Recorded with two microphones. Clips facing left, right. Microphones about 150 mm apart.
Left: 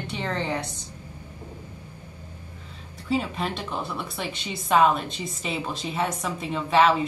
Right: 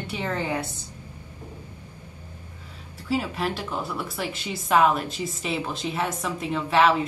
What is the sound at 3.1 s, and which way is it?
Speech, 5° right (ahead or behind).